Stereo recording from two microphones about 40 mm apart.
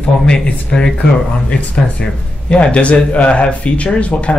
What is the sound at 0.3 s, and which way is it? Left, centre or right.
Speech, left.